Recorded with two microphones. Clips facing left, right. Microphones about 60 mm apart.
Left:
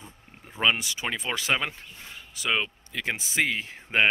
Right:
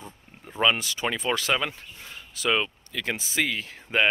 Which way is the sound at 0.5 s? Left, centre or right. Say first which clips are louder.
Right 2 dB; centre.